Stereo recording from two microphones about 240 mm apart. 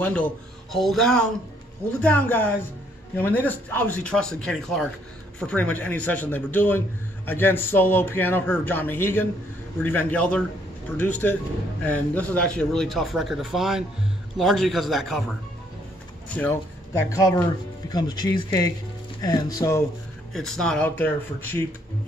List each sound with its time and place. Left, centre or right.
0.0 s a man's voice: centre
16.3 s a man's voice: centre
20.3 s speech: centre